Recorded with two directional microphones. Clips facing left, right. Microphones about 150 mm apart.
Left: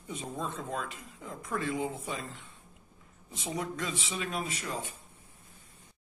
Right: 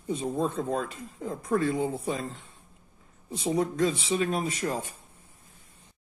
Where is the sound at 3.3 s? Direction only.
35° right (ahead or behind).